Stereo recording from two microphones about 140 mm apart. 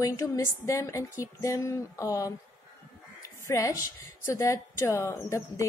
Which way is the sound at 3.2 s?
20° left (ahead or behind).